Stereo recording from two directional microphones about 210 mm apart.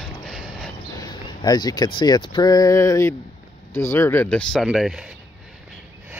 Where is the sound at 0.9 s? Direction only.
20° left (ahead or behind).